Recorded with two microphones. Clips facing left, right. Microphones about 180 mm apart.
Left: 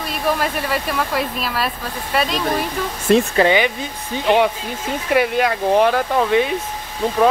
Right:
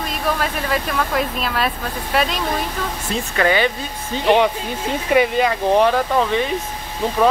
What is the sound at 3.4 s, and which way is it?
Speech, 20° left (ahead or behind).